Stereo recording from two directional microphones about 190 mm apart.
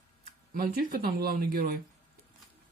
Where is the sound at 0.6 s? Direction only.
45° right (ahead or behind).